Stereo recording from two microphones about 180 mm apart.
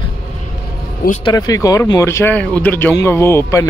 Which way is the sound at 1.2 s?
20° left (ahead or behind).